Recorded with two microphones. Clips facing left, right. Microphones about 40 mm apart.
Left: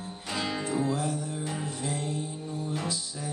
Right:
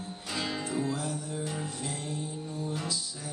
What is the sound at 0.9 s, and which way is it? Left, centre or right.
Music, left.